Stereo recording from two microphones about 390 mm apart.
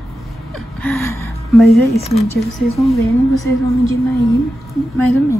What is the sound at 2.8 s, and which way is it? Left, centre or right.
Speech, centre.